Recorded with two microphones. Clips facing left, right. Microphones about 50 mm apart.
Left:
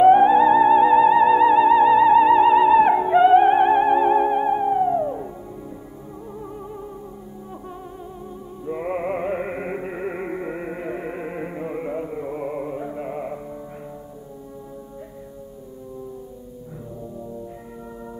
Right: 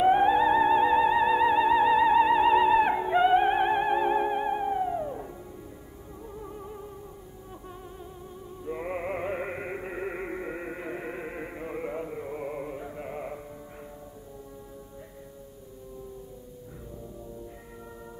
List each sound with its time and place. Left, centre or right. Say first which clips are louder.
0.0 s music: left 8 dB; left
8.6 s music: left 7 dB; left